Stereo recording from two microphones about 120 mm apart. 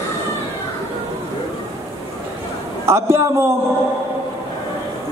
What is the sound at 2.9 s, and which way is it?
Speech, 20° right (ahead or behind).